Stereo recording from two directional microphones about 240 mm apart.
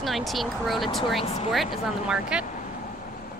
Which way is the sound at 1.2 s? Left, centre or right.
Left.